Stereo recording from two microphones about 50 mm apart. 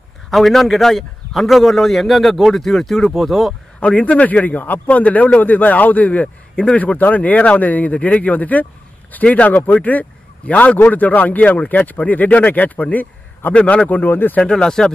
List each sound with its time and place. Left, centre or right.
0.3 s a man's voice: centre
3.8 s a man's voice: left
6.8 s a man's voice: left
13.8 s a man's voice: left
14.4 s speech: centre